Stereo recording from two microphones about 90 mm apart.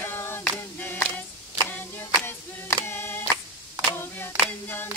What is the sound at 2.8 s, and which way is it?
Singing, 25° left (ahead or behind).